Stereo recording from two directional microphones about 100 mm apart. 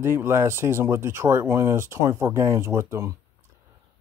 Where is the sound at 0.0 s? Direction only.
25° right (ahead or behind).